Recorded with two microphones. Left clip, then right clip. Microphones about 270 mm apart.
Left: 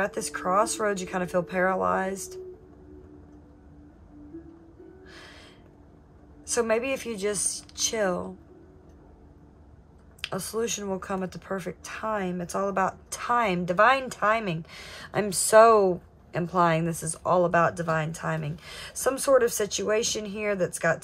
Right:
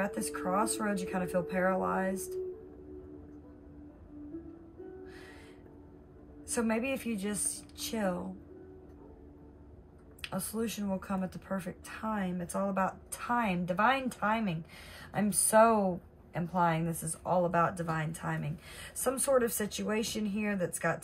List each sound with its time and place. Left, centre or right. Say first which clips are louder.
0.0 s speech: left 6 dB; left
6.5 s speech: left 8 dB; left
10.2 s speech: left 8 dB; left